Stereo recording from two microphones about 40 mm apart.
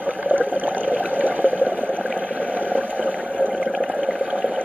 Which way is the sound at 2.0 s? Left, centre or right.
Centre.